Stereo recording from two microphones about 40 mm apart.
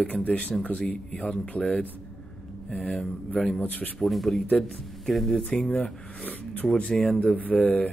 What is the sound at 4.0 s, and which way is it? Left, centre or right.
Speech, centre.